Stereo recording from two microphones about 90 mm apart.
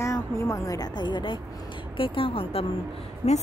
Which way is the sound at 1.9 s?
80° left.